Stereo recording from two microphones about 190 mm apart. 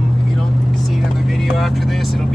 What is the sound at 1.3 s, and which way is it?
Speech, centre (ahead or behind).